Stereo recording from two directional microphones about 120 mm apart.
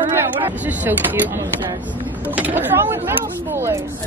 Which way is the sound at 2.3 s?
15° right (ahead or behind).